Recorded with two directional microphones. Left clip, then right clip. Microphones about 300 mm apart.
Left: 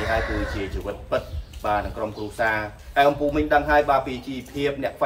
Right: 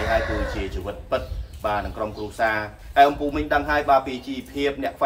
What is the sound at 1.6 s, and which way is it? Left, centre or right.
Speech, centre.